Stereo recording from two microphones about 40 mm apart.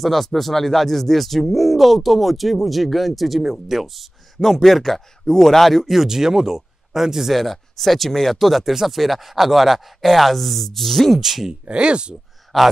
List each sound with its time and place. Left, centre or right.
0.0 s speech: centre
11.1 s speech: centre
11.7 s speech: right
12.5 s speech: centre